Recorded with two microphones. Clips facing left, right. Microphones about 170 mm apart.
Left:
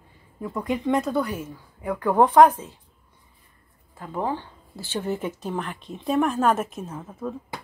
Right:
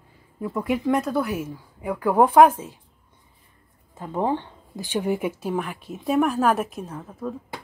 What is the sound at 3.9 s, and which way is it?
Speech, 20° right (ahead or behind).